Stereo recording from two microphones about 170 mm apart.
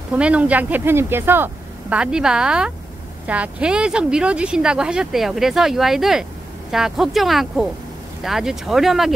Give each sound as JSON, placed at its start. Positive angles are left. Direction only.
{"t": 0.1, "sound": "speech", "side_deg": -10}